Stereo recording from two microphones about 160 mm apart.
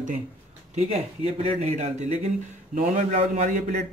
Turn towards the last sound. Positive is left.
turn(degrees=-55)  # may be behind; listen again after turning